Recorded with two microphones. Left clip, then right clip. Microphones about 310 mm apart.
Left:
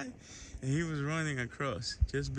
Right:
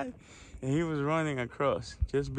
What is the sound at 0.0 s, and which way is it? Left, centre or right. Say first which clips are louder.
Speech: right 5 dB; centre.